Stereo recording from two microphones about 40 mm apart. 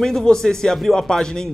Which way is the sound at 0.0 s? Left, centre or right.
Centre.